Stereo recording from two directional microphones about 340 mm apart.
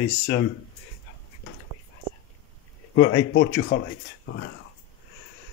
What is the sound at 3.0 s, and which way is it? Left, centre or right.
Speech, left.